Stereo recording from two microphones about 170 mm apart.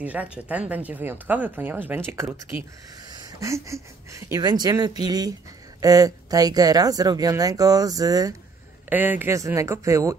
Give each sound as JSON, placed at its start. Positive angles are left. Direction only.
{"t": 0.0, "sound": "speech", "side_deg": -10}
{"t": 8.8, "sound": "speech", "side_deg": -10}